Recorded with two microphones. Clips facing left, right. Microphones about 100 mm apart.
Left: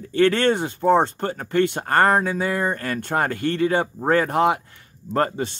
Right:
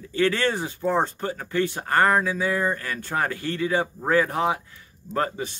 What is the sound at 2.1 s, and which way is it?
Speech, 50° left (ahead or behind).